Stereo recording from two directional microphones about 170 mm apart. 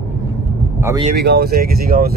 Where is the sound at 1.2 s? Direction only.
70° right (ahead or behind).